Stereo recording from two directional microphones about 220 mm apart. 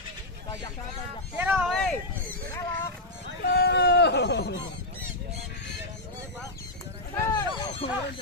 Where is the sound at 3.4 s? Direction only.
45° left (ahead or behind).